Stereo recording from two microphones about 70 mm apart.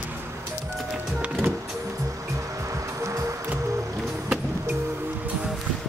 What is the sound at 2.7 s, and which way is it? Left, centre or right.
Music, right.